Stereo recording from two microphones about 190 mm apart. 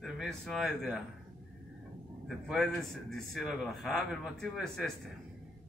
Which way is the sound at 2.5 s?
Centre (ahead or behind).